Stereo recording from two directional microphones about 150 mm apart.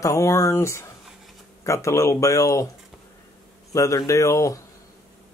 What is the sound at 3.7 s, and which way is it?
Speech, 20° left (ahead or behind).